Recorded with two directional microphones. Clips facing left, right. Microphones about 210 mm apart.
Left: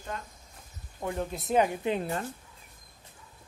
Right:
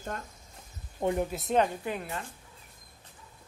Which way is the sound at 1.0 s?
20° right (ahead or behind).